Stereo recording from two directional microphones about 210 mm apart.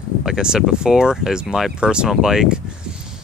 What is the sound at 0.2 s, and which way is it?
Speech, 5° right (ahead or behind).